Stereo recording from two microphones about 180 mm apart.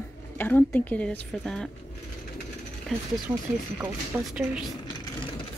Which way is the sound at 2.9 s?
Centre (ahead or behind).